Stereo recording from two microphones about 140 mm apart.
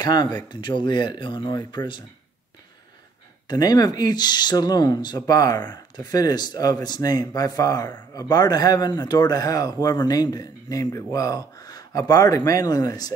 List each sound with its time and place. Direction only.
0.0 s speech: 30° left (ahead or behind)
3.4 s speech: 30° left (ahead or behind)